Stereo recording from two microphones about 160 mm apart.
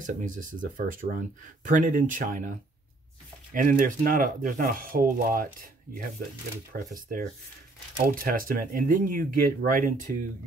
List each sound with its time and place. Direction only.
0.0 s speech: 55° right (ahead or behind)
3.5 s speech: 60° right (ahead or behind)